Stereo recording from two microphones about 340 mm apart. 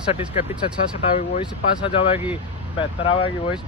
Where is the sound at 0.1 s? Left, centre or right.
Centre.